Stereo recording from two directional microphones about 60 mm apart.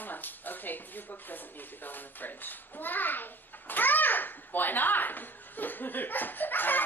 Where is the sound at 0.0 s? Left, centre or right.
Left.